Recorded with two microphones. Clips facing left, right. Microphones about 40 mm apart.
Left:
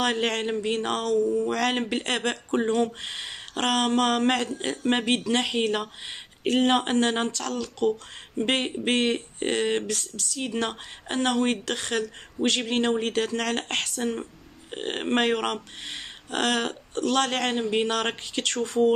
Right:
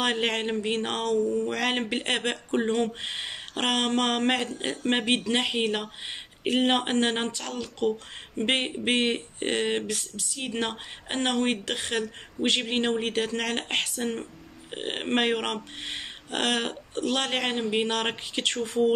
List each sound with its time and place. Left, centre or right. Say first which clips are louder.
0.0 s speech: left 1 dB; right
15.8 s speech: right 1 dB; right